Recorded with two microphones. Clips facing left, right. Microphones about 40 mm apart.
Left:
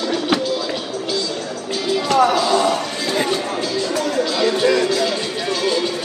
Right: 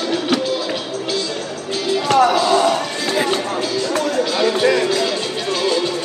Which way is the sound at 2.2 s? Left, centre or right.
Centre.